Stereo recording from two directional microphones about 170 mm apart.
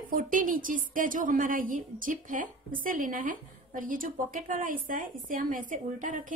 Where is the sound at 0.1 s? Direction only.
55° right (ahead or behind).